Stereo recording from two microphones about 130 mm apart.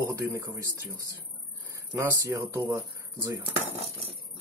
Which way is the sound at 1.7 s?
25° right (ahead or behind).